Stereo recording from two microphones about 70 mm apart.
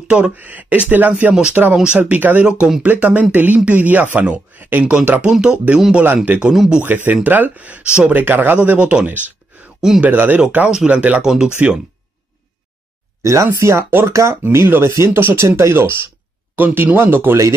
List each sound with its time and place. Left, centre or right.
0.1 s speech: right
6.2 s speech: right
6.5 s speech: centre
6.8 s speech: right
9.8 s speech: centre
10.0 s speech: right
13.2 s speech: right
15.0 s speech: right